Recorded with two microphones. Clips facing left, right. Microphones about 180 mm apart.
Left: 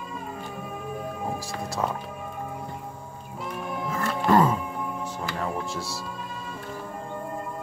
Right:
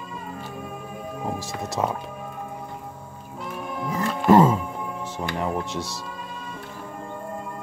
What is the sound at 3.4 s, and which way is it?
Music, centre (ahead or behind).